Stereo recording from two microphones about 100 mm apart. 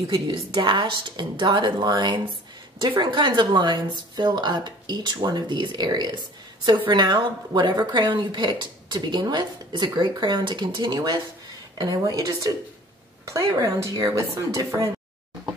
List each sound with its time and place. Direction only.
0.1 s a woman's voice: 50° right (ahead or behind)
13.6 s a woman's voice: 35° right (ahead or behind)